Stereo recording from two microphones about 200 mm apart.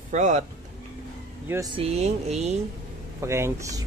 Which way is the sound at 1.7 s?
30° right (ahead or behind).